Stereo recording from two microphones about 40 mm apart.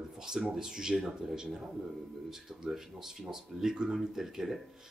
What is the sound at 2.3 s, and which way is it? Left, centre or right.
Speech, centre.